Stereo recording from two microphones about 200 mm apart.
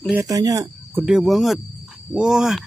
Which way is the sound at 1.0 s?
Centre (ahead or behind).